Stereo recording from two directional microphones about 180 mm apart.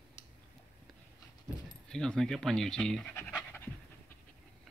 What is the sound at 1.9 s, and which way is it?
Speech, 5° left (ahead or behind).